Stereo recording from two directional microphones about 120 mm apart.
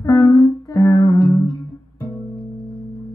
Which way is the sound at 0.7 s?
30° left (ahead or behind).